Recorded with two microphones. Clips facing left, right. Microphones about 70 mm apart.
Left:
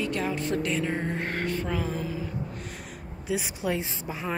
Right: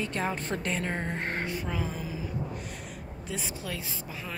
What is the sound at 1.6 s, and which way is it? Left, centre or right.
Speech, centre.